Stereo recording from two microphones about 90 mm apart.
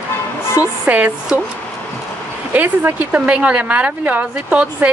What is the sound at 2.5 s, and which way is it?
A woman's voice, 20° right (ahead or behind).